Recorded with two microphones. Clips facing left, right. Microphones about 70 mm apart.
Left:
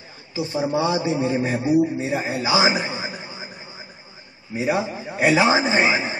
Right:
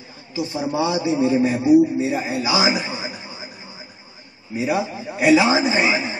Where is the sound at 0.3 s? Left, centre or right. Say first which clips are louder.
Left 1 dB; left.